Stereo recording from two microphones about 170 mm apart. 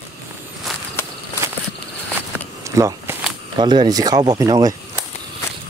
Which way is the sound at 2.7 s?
20° right (ahead or behind).